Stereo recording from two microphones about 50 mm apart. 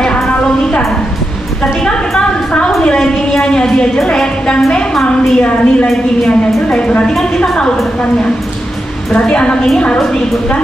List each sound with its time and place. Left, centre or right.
0.4 s a sound: centre
4.0 s a woman's voice: centre
9.1 s a woman's voice: left